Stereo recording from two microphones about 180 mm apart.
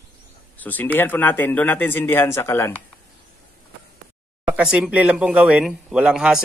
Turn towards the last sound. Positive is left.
turn(degrees=-5)  # may be behind; listen again after turning